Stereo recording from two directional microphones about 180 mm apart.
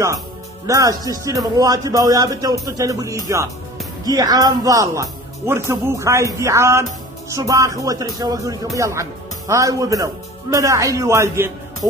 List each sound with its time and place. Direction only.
0.7 s a man's voice: 20° right (ahead or behind)